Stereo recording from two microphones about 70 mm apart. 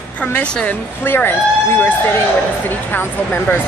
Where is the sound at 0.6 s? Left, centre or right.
Left.